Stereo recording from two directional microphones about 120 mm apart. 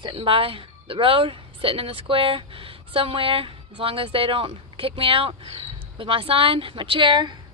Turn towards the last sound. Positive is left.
turn(degrees=-40)  # may be behind; listen again after turning